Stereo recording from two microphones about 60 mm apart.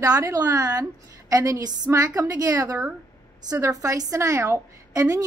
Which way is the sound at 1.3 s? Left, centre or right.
Right.